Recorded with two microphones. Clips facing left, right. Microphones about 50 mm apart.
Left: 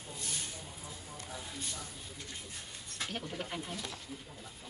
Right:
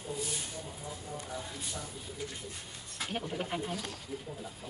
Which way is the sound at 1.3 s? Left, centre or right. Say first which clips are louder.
Right 3 dB; centre.